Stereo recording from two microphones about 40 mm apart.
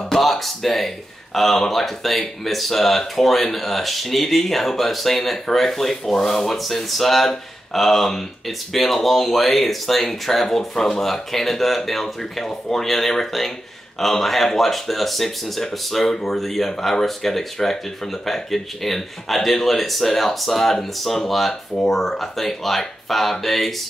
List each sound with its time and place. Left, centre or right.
0.1 s speech: centre
12.8 s speech: centre